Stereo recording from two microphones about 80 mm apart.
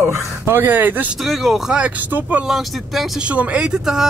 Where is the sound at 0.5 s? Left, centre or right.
Right.